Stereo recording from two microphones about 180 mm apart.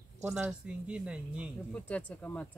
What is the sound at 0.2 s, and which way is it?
Speech, 10° right (ahead or behind).